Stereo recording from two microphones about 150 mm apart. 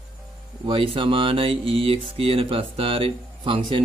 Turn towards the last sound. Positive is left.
turn(degrees=-35)  # may be behind; listen again after turning